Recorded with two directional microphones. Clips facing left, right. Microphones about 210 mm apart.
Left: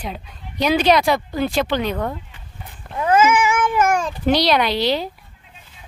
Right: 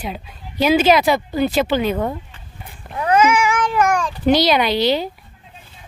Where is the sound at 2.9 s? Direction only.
20° right (ahead or behind).